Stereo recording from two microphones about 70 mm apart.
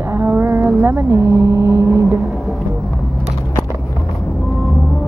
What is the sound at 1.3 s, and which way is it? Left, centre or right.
Vehicle, right.